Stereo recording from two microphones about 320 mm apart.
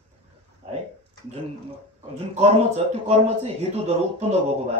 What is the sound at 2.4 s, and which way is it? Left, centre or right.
Speech, centre.